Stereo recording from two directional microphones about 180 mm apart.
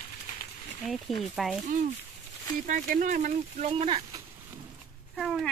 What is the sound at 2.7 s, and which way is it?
Speech, 50° right (ahead or behind).